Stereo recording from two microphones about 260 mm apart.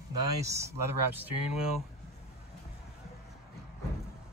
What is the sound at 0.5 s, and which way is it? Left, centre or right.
Speech, centre.